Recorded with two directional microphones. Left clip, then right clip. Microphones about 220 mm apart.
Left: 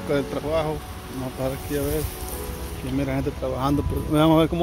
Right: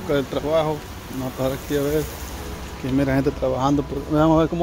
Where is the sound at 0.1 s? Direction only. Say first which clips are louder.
Right 3 dB; 5° right (ahead or behind).